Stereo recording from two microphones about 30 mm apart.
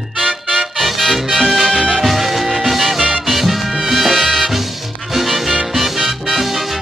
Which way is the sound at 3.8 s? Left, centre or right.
Centre.